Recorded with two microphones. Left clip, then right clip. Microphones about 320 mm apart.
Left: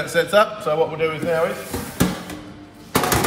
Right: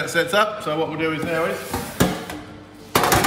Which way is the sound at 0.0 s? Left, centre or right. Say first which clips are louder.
Left 2 dB; centre.